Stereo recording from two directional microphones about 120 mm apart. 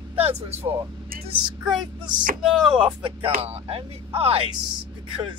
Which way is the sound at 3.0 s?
50° right (ahead or behind).